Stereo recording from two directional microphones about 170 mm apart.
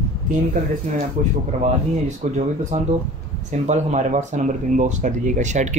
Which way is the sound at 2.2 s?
45° right (ahead or behind).